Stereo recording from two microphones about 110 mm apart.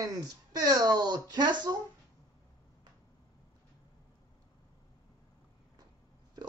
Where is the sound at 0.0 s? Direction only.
35° right (ahead or behind).